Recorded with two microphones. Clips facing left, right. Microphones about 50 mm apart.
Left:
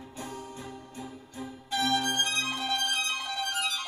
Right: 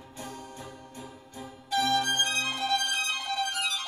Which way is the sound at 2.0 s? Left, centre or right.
Right.